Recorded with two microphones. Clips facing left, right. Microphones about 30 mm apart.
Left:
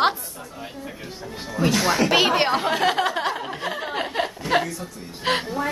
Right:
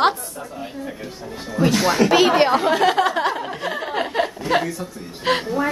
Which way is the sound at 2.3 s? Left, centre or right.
Centre.